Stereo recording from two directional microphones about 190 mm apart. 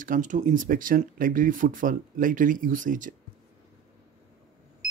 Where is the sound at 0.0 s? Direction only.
45° right (ahead or behind).